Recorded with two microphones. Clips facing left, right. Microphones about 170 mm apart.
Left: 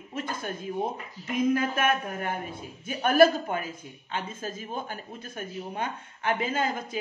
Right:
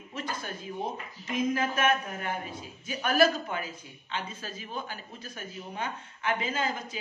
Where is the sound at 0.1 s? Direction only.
50° left (ahead or behind).